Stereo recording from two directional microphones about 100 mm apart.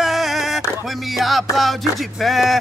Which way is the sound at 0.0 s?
Centre (ahead or behind).